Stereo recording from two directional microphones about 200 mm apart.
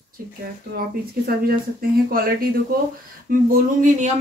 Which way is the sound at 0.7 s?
50° right (ahead or behind).